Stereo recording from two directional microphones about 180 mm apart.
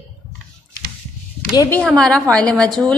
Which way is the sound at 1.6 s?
10° left (ahead or behind).